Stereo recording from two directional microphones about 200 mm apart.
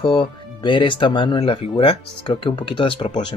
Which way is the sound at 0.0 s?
25° left (ahead or behind).